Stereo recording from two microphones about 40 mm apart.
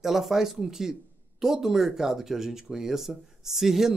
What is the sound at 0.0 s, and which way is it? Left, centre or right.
Speech, centre.